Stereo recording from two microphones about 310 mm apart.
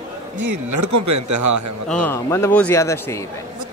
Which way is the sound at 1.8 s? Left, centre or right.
Centre.